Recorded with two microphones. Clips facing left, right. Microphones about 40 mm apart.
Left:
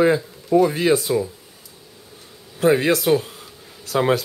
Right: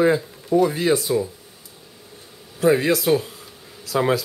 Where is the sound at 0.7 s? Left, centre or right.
Left.